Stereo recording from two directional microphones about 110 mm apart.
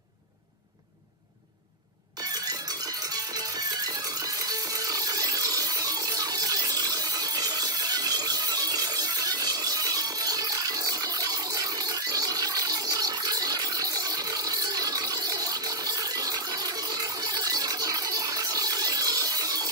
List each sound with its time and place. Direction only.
3.3 s music: 35° right (ahead or behind)